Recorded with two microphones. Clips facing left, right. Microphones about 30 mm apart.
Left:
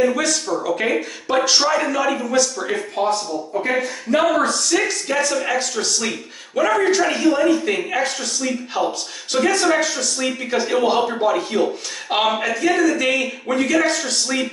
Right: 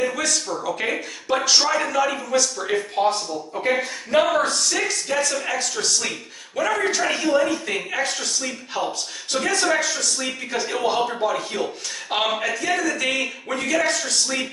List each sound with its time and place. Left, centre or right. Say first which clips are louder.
0.0 s a man's voice: left 5 dB; centre
3.0 s speech: left 1 dB; right
4.2 s a man's voice: left 1 dB; centre